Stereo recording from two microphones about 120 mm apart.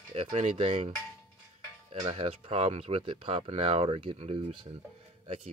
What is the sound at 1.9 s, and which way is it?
Speech, 60° right (ahead or behind).